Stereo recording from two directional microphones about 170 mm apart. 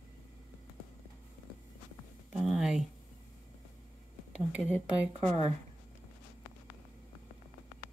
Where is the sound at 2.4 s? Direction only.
Centre (ahead or behind).